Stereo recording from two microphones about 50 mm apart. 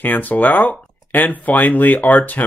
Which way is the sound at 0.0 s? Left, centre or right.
Left.